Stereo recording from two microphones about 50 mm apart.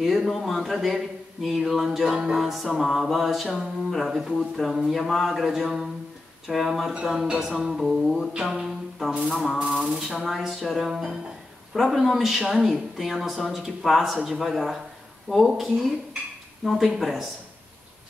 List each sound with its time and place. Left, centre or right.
0.0 s a woman's voice: centre
2.0 s a sound: centre
2.7 s a woman's voice: centre
7.2 s a sound: centre
8.3 s music: centre
9.1 s music: centre
10.0 s a woman's voice: centre